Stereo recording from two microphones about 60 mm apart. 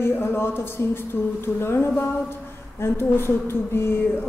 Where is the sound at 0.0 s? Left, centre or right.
Left.